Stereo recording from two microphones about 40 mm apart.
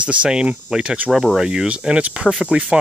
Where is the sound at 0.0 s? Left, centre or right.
Right.